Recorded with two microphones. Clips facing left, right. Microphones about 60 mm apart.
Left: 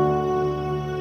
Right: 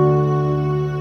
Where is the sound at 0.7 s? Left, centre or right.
Right.